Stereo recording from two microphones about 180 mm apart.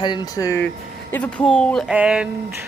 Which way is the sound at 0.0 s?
25° left (ahead or behind).